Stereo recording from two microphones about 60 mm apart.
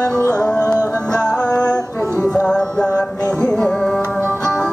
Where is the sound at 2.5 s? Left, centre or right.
Centre.